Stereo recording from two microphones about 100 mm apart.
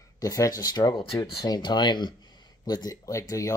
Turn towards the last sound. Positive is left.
turn(degrees=35)  # may be behind; listen again after turning